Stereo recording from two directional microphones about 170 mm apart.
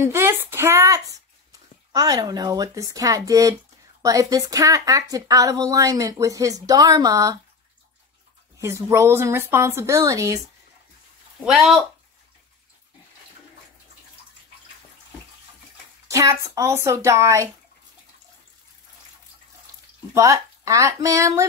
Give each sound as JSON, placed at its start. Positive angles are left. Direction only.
{"t": 0.0, "sound": "a woman's voice", "side_deg": -15}
{"t": 8.5, "sound": "speech", "side_deg": -15}
{"t": 11.4, "sound": "speech", "side_deg": 0}
{"t": 16.1, "sound": "speech", "side_deg": -20}
{"t": 20.2, "sound": "a woman's voice", "side_deg": -20}